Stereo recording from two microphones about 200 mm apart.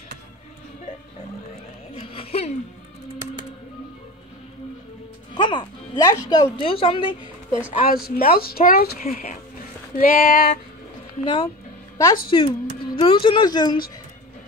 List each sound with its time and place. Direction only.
2.0 s a sound: 30° left (ahead or behind)
5.3 s speech: 20° left (ahead or behind)
7.8 s speech: 45° left (ahead or behind)
11.2 s speech: 25° left (ahead or behind)